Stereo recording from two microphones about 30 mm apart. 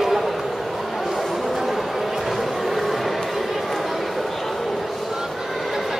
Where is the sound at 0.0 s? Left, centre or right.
Centre.